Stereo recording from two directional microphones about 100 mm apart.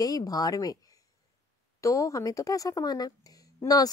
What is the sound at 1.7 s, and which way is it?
Speech, 30° left (ahead or behind).